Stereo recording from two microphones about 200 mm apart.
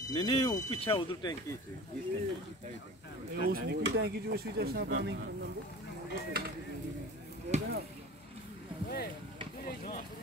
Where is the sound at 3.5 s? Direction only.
60° right (ahead or behind).